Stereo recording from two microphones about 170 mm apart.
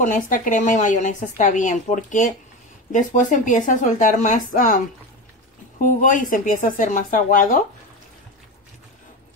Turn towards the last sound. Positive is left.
turn(degrees=50)  # may be behind; listen again after turning